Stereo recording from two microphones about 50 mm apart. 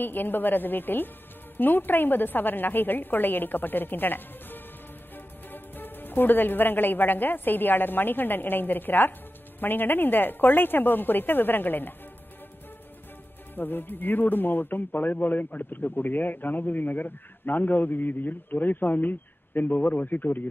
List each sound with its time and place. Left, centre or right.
0.0 s a man's voice: left
13.6 s a man's voice: left